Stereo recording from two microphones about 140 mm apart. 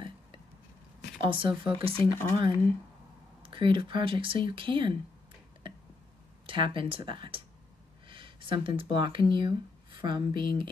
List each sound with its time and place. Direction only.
1.2 s speech: 35° right (ahead or behind)
2.0 s speech: 15° left (ahead or behind)
3.4 s speech: 35° right (ahead or behind)
5.6 s a sound: 35° right (ahead or behind)
6.4 s speech: 35° right (ahead or behind)